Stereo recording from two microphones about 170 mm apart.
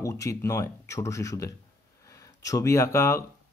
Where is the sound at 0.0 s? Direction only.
20° left (ahead or behind).